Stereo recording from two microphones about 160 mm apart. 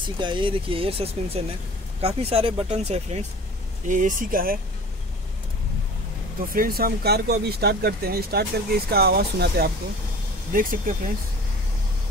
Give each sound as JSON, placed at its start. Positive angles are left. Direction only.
{"t": 0.2, "sound": "speech", "side_deg": -30}
{"t": 3.9, "sound": "speech", "side_deg": -55}
{"t": 6.5, "sound": "speech", "side_deg": -65}
{"t": 10.5, "sound": "speech", "side_deg": -60}